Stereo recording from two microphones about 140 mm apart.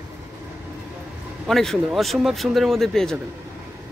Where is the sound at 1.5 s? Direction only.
Centre (ahead or behind).